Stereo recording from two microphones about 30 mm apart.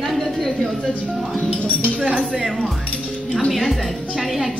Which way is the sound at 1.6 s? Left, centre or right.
Left.